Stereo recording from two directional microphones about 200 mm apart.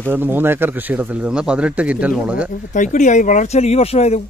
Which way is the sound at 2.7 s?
35° left (ahead or behind).